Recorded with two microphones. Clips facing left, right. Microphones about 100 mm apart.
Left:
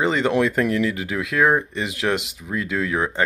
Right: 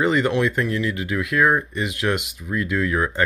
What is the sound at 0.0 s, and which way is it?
Speech, 25° left (ahead or behind).